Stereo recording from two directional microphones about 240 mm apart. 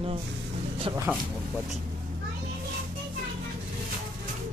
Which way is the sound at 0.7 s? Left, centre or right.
Right.